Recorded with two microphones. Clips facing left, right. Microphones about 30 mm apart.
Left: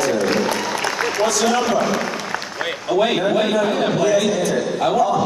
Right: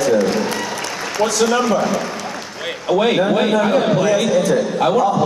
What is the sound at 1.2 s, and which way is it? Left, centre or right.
A man's voice, centre.